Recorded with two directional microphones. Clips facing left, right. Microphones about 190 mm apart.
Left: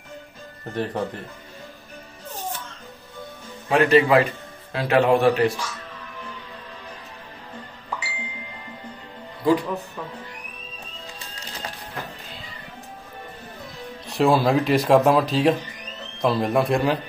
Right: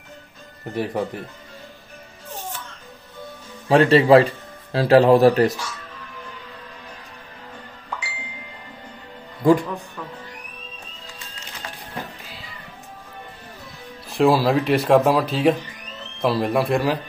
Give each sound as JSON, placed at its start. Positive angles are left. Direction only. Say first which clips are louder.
{"t": 0.7, "sound": "speech", "louder": "right 2 dB", "side_deg": -10}
{"t": 3.6, "sound": "a man's voice", "louder": "right 3 dB", "side_deg": -30}
{"t": 9.4, "sound": "speech", "louder": "right 4 dB", "side_deg": -50}
{"t": 14.0, "sound": "speech", "louder": "right 2 dB", "side_deg": 0}